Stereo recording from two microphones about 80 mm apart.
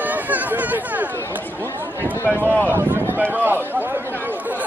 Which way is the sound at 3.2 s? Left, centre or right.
Right.